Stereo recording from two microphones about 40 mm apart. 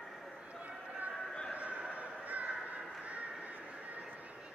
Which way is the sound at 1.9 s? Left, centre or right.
Right.